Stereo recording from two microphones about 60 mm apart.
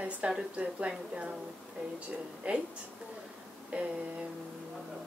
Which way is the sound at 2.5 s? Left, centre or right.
Right.